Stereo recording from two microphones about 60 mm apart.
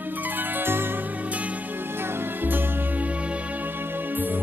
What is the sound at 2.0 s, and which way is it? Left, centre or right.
Music, right.